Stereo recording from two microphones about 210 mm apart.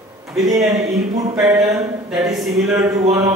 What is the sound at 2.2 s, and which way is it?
Speech, centre (ahead or behind).